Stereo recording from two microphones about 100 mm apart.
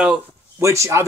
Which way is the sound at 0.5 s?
30° right (ahead or behind).